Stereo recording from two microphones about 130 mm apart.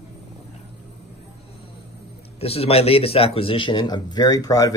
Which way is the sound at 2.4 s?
50° left (ahead or behind).